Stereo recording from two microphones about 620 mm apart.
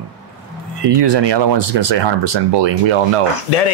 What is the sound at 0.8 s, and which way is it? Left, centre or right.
Speech, right.